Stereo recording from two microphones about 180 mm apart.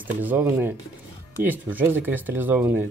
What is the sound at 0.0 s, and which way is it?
Speech, 10° right (ahead or behind).